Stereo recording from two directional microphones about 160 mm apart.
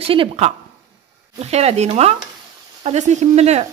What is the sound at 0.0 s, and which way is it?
A woman's voice, 35° right (ahead or behind).